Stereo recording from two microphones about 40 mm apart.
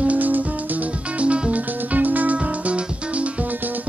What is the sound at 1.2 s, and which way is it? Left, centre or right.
Music, right.